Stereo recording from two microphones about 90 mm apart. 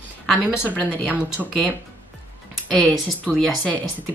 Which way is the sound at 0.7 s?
15° right (ahead or behind).